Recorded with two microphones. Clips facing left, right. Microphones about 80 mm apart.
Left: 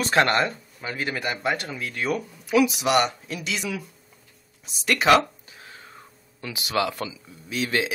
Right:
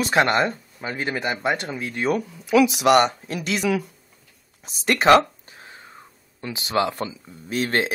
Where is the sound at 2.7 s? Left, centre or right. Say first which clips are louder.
Right 5 dB; right.